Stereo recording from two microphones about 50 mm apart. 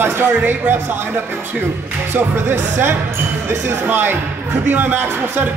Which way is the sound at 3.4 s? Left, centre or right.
Right.